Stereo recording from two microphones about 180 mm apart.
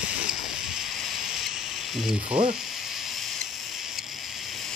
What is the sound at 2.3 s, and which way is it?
Sizzle, 30° right (ahead or behind).